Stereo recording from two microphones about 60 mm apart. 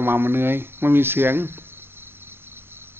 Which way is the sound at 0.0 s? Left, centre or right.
Right.